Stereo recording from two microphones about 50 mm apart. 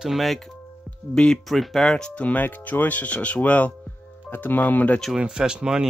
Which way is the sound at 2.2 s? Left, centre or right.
Left.